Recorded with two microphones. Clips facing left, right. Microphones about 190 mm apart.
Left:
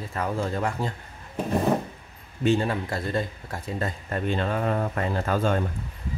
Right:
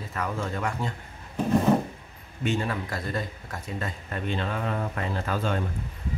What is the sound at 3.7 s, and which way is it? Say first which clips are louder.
Speech: left 4 dB; 40° left (ahead or behind).